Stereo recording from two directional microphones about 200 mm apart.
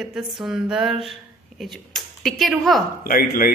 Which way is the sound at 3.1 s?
45° left (ahead or behind).